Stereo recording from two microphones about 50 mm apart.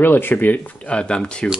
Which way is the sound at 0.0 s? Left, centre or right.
Left.